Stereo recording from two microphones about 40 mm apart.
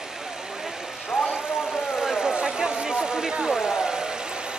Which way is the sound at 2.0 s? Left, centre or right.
Centre.